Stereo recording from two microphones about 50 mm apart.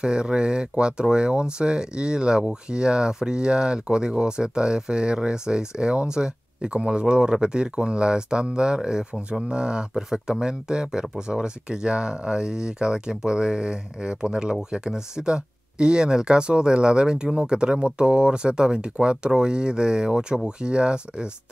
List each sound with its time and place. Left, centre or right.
0.0 s speech: centre